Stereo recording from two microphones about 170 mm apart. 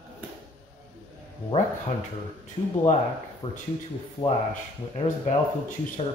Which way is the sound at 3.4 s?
35° left (ahead or behind).